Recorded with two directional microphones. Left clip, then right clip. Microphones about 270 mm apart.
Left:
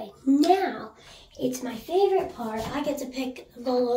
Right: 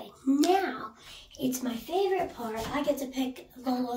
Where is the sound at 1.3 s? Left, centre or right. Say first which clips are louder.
Left 4 dB; centre.